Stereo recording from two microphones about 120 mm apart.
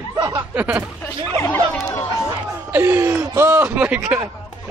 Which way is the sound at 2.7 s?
20° right (ahead or behind).